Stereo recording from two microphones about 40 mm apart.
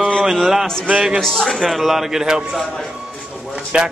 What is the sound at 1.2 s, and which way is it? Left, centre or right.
A man's voice, centre.